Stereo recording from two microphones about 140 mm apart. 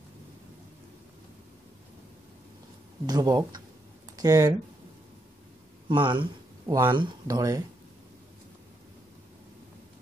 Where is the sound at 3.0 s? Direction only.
30° right (ahead or behind).